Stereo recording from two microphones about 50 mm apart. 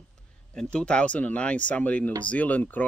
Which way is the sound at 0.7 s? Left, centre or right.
Left.